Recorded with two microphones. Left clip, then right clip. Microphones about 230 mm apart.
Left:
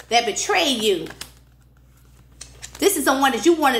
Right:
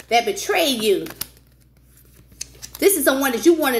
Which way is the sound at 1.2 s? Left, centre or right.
Right.